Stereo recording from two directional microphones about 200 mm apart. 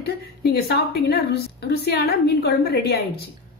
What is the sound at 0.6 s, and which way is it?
A woman's voice, 55° left (ahead or behind).